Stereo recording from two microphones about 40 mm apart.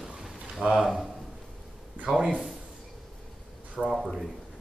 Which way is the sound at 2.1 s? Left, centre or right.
Centre.